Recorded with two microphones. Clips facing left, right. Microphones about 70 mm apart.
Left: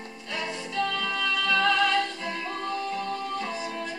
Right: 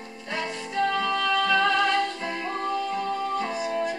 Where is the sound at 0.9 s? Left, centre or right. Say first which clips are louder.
Right 5 dB; centre.